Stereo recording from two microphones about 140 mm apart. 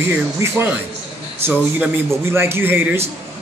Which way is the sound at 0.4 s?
20° right (ahead or behind).